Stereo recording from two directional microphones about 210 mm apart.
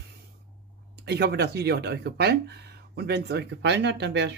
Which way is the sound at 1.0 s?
50° right (ahead or behind).